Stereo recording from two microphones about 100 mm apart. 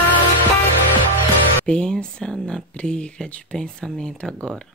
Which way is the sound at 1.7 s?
10° left (ahead or behind).